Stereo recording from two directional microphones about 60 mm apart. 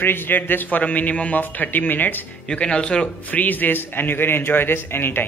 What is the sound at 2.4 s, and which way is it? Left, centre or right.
Speech, centre.